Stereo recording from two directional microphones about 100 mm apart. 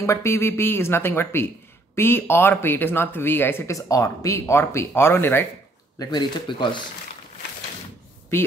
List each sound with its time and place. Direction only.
0.0 s speech: 30° left (ahead or behind)
5.9 s speech: 45° left (ahead or behind)